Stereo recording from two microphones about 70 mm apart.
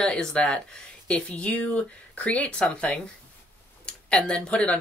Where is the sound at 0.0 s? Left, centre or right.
Centre.